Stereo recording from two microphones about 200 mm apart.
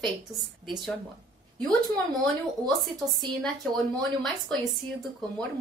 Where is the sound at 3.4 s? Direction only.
Centre (ahead or behind).